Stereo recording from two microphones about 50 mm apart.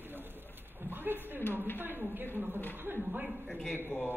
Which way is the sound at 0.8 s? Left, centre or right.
Right.